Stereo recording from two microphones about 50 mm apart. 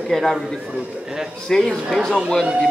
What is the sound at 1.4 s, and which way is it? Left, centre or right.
Speech, centre.